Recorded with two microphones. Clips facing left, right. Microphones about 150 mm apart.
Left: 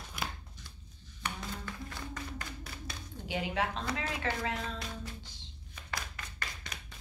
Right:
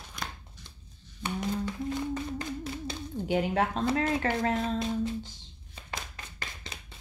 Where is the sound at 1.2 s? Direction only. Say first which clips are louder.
Right 9 dB; 20° right (ahead or behind).